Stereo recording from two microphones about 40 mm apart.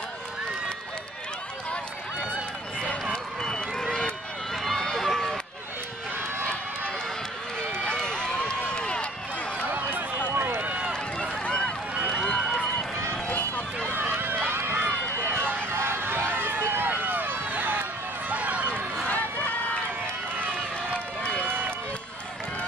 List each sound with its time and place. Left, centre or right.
3.1 s run: centre
7.8 s run: left
9.7 s run: right
10.3 s run: right
11.4 s run: left
13.1 s run: left
13.9 s run: right
19.0 s run: left
20.9 s run: left
21.5 s run: right